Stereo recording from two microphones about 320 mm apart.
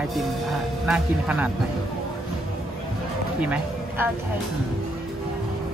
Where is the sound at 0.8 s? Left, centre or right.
Centre.